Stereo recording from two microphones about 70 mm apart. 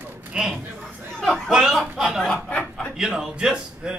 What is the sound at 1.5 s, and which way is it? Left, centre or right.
Speech, centre.